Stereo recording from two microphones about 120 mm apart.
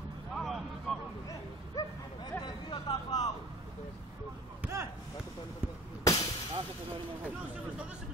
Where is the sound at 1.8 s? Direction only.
35° left (ahead or behind).